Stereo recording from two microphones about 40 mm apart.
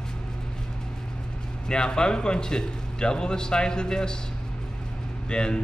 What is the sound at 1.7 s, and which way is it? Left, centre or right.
A man's voice, left.